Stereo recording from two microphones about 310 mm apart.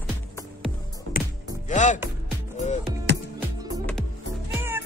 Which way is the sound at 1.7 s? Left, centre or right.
Left.